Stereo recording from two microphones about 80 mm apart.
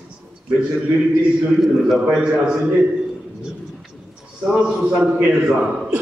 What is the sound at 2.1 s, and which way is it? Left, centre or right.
Speech, centre.